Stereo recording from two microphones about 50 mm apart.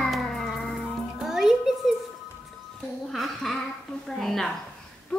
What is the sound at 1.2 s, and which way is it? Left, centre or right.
Music, centre.